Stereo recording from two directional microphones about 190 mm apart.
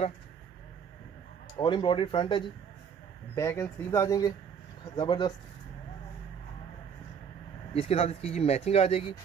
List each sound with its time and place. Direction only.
1.6 s speech: 25° left (ahead or behind)
3.3 s speech: 15° left (ahead or behind)
7.7 s speech: 30° left (ahead or behind)